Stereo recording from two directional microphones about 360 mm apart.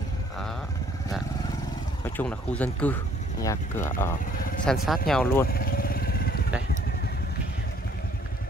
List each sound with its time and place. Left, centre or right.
2.0 s speech: centre
5.5 s vehicle: left